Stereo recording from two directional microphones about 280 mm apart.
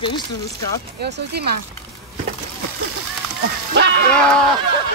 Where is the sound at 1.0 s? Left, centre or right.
Right.